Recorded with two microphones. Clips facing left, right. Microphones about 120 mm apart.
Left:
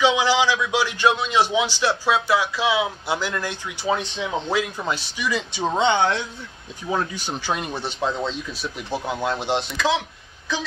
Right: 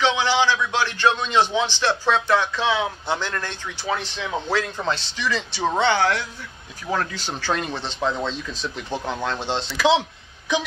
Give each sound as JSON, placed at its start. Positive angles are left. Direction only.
{"t": 0.0, "sound": "a man's voice", "side_deg": 15}